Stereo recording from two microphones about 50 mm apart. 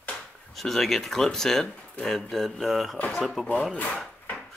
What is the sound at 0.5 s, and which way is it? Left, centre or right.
Speech, centre.